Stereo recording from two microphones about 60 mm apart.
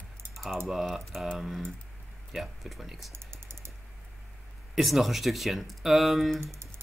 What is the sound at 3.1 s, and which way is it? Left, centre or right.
Typing, right.